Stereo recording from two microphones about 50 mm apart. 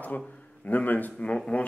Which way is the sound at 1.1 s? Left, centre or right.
Centre.